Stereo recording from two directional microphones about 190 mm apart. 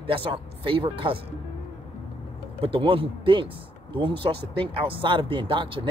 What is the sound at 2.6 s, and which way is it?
Speech, 30° right (ahead or behind).